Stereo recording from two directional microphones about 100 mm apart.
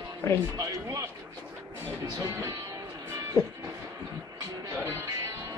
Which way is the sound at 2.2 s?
35° right (ahead or behind).